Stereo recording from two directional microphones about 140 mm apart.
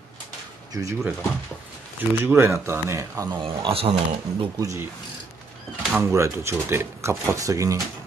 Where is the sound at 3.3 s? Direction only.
35° right (ahead or behind).